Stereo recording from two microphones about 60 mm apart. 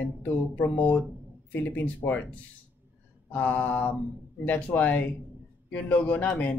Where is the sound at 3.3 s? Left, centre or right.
Left.